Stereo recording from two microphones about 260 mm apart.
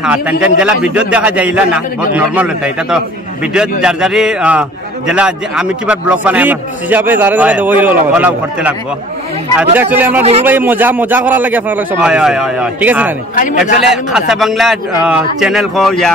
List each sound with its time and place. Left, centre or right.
0.0 s a man's voice: centre
13.4 s a man's voice: left
14.1 s a man's voice: centre